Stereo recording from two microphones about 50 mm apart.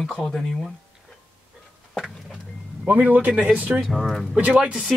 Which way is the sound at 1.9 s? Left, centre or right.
Centre.